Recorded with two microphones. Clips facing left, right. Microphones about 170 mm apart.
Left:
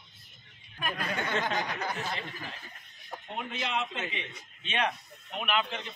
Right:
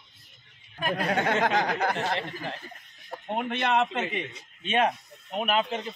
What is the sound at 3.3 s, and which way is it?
A man's voice, 60° right (ahead or behind).